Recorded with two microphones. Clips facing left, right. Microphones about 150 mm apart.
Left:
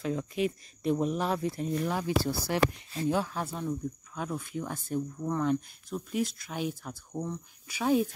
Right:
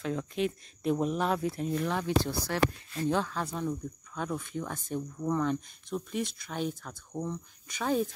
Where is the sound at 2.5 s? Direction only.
20° left (ahead or behind).